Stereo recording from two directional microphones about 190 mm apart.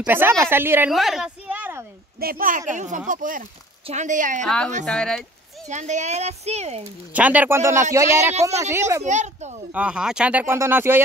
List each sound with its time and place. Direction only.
0.0 s speech: 10° right (ahead or behind)
0.9 s a sound: centre (ahead or behind)
2.1 s a child's voice: 50° right (ahead or behind)
4.4 s speech: 5° left (ahead or behind)
5.7 s a child's voice: 40° right (ahead or behind)
7.1 s speech: 10° right (ahead or behind)
9.0 s a child's voice: 40° right (ahead or behind)
9.7 s speech: 5° right (ahead or behind)